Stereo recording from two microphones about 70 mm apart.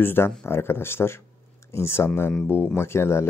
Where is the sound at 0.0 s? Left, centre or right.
Left.